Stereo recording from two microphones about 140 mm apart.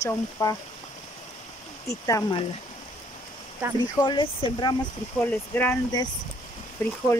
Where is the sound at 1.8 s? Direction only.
25° left (ahead or behind).